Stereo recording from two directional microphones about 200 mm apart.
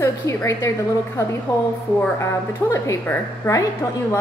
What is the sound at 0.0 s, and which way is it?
Speech, 15° left (ahead or behind).